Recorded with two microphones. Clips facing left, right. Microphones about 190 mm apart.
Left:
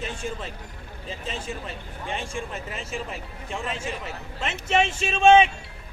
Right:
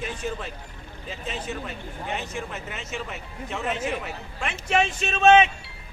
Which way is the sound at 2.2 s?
30° left (ahead or behind).